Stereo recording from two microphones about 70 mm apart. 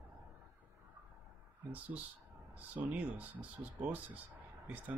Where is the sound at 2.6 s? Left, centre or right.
Right.